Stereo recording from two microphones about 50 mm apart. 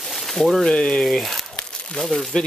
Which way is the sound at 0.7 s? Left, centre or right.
Centre.